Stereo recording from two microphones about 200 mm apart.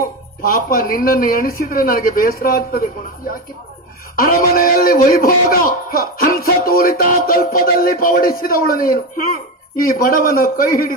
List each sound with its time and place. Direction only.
0.4 s speech: 45° left (ahead or behind)